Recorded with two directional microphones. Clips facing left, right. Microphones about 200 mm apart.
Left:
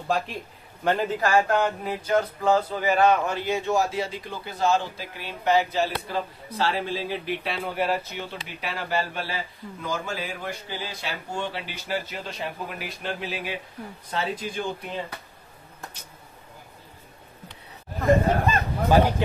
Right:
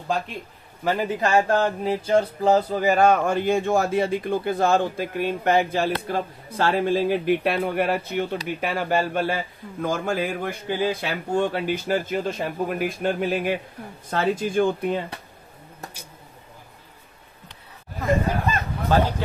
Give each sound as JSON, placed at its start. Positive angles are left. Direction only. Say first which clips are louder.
{"t": 0.8, "sound": "a man's voice", "louder": "even", "side_deg": -10}
{"t": 1.2, "sound": "a sound", "louder": "right 2 dB", "side_deg": -25}
{"t": 18.9, "sound": "speech", "louder": "left 1 dB", "side_deg": 15}